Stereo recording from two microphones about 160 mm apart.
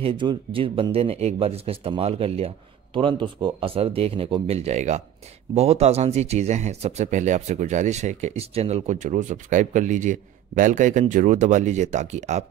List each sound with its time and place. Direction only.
0.0 s speech: 30° right (ahead or behind)